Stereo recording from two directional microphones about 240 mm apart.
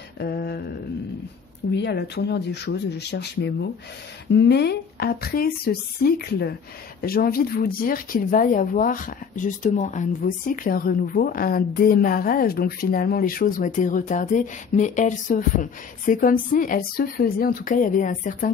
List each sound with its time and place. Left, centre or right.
0.2 s mantra: left
1.7 s speech: left